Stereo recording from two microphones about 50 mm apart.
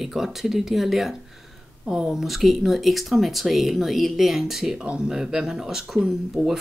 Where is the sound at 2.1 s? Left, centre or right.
Centre.